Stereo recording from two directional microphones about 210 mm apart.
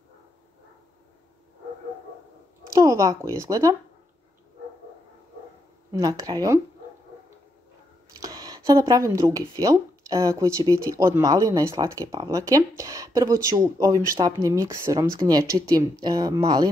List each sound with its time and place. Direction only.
2.7 s speech: 15° right (ahead or behind)
5.9 s speech: 15° right (ahead or behind)
8.2 s speech: 15° right (ahead or behind)